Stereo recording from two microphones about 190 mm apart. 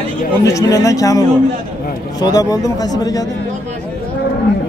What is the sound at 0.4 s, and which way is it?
A man's voice, 15° left (ahead or behind).